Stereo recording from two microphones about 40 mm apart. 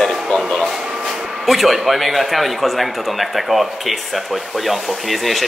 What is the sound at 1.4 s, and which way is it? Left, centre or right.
Speech, centre.